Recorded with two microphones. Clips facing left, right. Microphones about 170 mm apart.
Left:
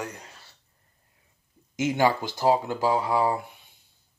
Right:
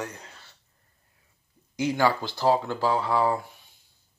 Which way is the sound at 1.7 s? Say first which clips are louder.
Left 1 dB; 20° left (ahead or behind).